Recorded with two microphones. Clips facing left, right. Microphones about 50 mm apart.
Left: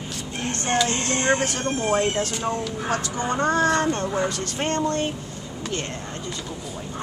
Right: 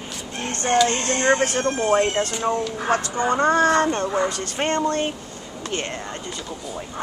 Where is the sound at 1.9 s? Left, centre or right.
Right.